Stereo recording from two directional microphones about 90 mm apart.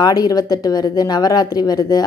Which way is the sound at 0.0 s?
45° left (ahead or behind).